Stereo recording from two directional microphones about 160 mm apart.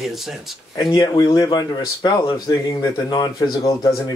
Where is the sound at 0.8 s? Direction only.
25° left (ahead or behind).